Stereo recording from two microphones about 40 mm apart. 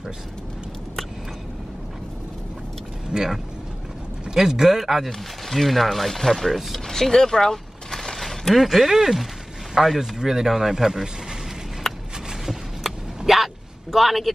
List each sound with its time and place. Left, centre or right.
3.1 s speech: right
4.3 s speech: centre
6.9 s speech: centre
11.9 s a sound: centre
13.2 s a sound: centre
13.9 s speech: centre